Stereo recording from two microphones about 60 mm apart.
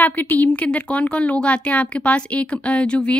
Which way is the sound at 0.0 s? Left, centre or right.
Left.